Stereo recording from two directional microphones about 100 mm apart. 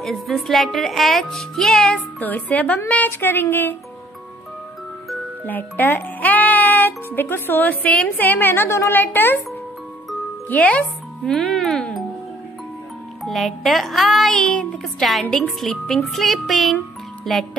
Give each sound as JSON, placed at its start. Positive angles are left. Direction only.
{"t": 0.0, "sound": "speech", "side_deg": 5}
{"t": 2.1, "sound": "speech", "side_deg": 15}
{"t": 5.5, "sound": "speech", "side_deg": 20}
{"t": 10.5, "sound": "speech", "side_deg": 15}
{"t": 13.2, "sound": "a child's voice", "side_deg": 0}